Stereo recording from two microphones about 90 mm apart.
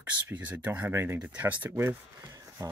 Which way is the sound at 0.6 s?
20° right (ahead or behind).